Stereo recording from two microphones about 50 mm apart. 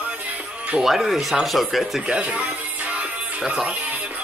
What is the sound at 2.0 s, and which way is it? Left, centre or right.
Music, right.